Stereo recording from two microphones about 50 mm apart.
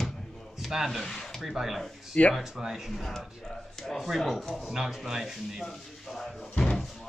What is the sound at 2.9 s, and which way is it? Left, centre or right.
Speech, centre.